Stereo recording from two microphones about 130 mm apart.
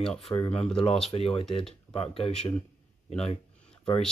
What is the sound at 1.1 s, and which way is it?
Speech, 45° left (ahead or behind).